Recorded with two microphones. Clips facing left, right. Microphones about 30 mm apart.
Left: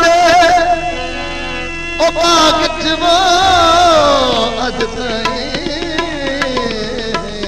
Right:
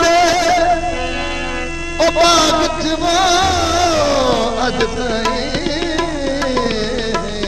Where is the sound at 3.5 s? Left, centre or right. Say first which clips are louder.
Left 7 dB; left.